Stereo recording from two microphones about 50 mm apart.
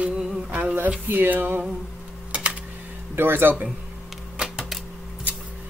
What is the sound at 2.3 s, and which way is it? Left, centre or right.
Computer keyboard, right.